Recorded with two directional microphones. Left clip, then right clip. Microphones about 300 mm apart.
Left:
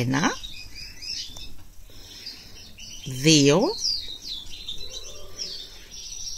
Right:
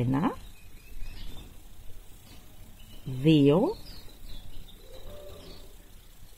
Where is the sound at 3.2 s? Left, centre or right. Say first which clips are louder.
Left 4 dB; centre.